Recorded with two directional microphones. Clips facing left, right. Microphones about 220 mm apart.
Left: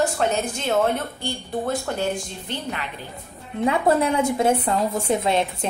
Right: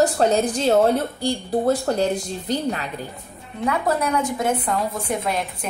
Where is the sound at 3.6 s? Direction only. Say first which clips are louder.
Left 3 dB; 25° left (ahead or behind).